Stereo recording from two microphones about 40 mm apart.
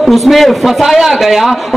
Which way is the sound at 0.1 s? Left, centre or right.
Centre.